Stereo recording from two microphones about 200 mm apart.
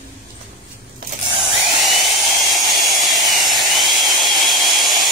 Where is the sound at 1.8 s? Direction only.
Centre (ahead or behind).